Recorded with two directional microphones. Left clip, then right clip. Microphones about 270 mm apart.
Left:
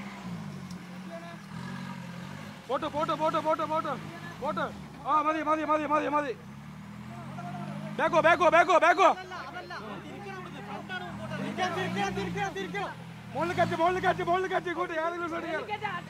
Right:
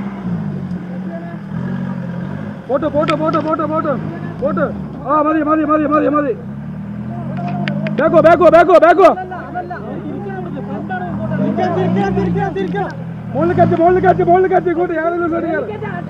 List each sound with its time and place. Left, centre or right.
2.7 s speech: centre
5.2 s a man's voice: centre
8.0 s speech: centre
10.9 s vehicle: centre
12.4 s speech: left
13.4 s speech: centre